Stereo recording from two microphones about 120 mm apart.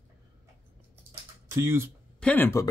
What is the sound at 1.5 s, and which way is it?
Speech, 25° right (ahead or behind).